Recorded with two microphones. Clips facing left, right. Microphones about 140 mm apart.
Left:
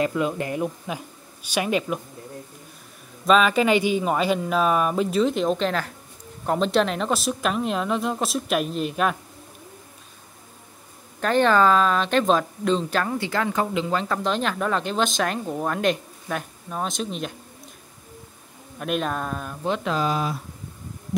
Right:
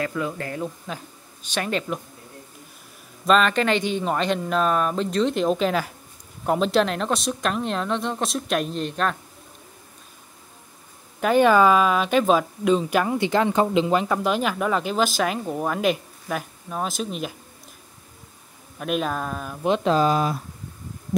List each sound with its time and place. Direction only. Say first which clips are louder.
0.0 s speech: left 3 dB; 20° left (ahead or behind)
3.3 s speech: left 1 dB; 5° left (ahead or behind)
11.1 s speech: right 2 dB; 10° right (ahead or behind)
18.8 s speech: right 1 dB; centre (ahead or behind)
19.8 s speech: right 6 dB; 35° right (ahead or behind)